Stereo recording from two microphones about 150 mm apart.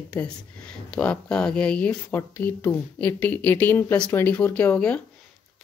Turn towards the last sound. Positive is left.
turn(degrees=10)  # may be behind; listen again after turning